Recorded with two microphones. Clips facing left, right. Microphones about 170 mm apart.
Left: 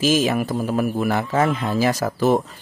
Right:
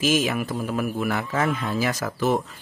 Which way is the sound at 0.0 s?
30° left (ahead or behind).